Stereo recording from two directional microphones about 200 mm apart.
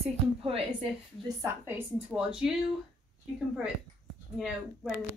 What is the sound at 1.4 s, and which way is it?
A woman's voice, 10° right (ahead or behind).